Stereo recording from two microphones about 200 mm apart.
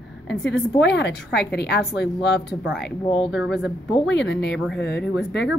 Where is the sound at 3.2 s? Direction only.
Centre (ahead or behind).